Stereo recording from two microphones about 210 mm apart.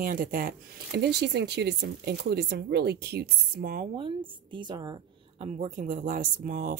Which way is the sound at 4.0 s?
25° right (ahead or behind).